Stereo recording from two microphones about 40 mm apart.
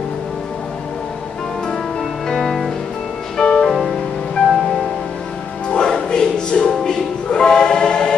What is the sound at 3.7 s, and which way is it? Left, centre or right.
Music, centre.